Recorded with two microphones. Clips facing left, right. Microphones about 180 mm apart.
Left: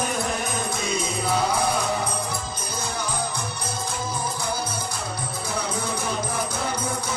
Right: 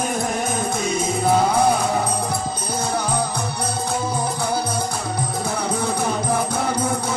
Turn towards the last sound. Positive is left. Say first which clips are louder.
# right 6 dB
turn(degrees=-60)  # may be behind; listen again after turning